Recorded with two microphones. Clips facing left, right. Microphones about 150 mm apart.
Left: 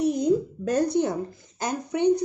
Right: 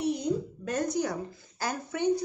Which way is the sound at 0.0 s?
45° left (ahead or behind).